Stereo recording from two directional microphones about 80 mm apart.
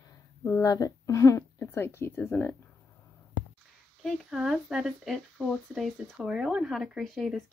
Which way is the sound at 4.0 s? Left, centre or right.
Centre.